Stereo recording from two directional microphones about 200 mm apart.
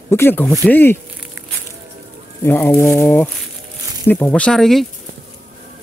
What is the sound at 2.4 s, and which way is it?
Speech, 10° left (ahead or behind).